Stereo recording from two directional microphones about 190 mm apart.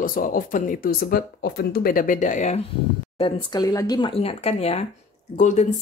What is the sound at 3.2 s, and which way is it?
Speech, 20° left (ahead or behind).